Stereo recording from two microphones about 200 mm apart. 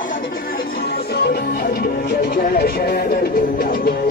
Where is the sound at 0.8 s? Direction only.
50° left (ahead or behind).